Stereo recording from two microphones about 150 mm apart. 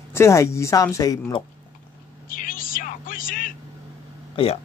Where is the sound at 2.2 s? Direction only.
65° left (ahead or behind).